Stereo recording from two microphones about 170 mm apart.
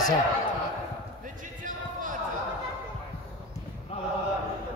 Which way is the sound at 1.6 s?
50° right (ahead or behind).